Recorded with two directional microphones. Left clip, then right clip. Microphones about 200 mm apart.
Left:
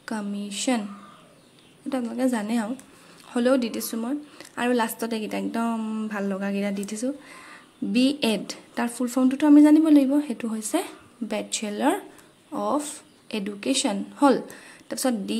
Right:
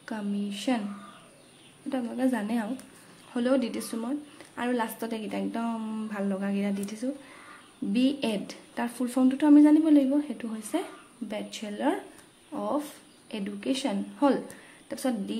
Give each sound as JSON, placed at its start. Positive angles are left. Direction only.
{"t": 0.0, "sound": "a woman's voice", "side_deg": 20}
{"t": 1.9, "sound": "a woman's voice", "side_deg": 20}